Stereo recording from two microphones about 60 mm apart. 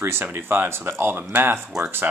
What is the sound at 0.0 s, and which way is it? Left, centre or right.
Speech, right.